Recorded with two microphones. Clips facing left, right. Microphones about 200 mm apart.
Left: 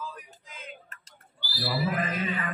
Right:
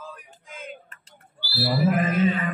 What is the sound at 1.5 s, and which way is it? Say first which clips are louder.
Wild animals: right 7 dB; 45° right (ahead or behind).